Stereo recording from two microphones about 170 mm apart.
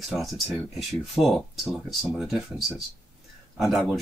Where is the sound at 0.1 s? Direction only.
5° right (ahead or behind).